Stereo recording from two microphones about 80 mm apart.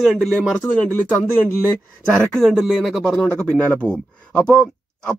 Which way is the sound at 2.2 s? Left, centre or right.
Centre.